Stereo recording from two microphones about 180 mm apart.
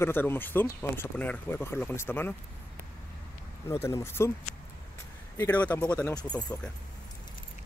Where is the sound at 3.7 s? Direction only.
15° left (ahead or behind).